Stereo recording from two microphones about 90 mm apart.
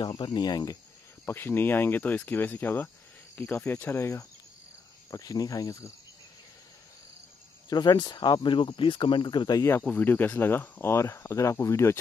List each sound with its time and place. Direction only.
0.2 s speech: 55° left (ahead or behind)
1.2 s speech: 25° left (ahead or behind)
5.1 s cricket: 40° left (ahead or behind)
7.7 s speech: 55° left (ahead or behind)
9.6 s speech: 25° left (ahead or behind)